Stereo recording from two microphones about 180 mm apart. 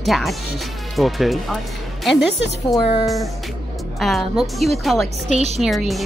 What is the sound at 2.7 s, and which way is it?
Speech, centre (ahead or behind).